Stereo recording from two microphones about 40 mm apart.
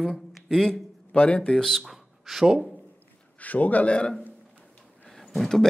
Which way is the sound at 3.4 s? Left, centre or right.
Left.